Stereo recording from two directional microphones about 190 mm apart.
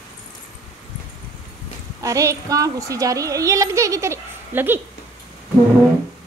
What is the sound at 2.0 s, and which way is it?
A woman's voice, 15° right (ahead or behind).